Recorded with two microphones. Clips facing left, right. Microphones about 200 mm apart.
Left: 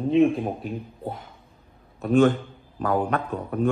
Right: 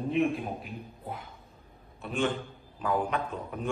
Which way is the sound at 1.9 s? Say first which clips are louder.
Left 14 dB; 40° left (ahead or behind).